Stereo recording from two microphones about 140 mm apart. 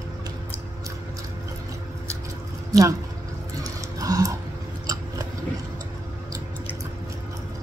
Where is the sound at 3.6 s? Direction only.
25° right (ahead or behind).